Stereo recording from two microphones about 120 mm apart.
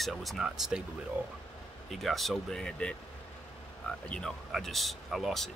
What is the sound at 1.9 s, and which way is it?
Speech, centre (ahead or behind).